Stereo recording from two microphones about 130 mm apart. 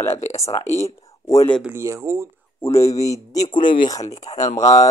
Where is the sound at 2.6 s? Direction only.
20° left (ahead or behind).